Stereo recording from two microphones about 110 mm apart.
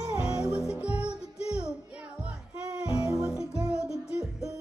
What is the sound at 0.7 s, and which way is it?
Music, 10° right (ahead or behind).